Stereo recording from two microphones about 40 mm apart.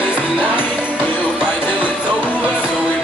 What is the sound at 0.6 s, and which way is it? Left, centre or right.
Music, left.